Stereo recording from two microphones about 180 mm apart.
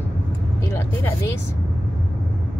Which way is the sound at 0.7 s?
10° left (ahead or behind).